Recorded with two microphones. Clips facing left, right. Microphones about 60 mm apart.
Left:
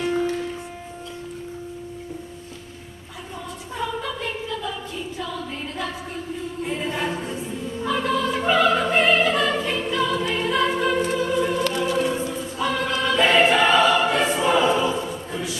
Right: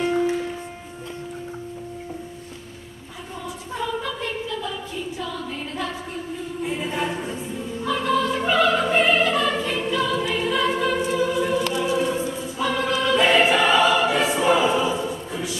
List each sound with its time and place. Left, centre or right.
0.0 s music: centre
3.7 s a sound: centre
6.6 s choir: centre
7.8 s music: centre
12.1 s choir: centre